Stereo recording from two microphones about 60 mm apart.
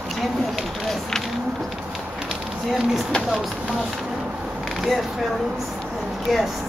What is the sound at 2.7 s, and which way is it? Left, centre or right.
Speech, centre.